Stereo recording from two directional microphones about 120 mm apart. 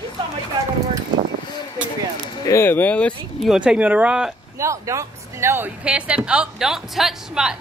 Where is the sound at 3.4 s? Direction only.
5° right (ahead or behind).